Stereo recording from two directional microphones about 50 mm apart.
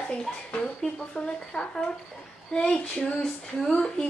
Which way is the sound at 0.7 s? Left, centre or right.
Centre.